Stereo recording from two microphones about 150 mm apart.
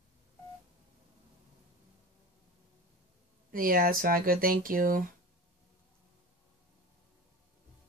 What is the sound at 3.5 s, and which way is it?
Speech, 70° right (ahead or behind).